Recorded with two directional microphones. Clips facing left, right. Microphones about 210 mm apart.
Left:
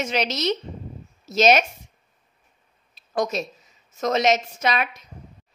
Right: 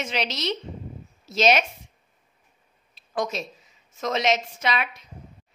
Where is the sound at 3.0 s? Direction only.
40° left (ahead or behind).